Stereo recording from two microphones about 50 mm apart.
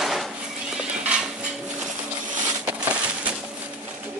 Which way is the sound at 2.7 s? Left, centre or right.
Right.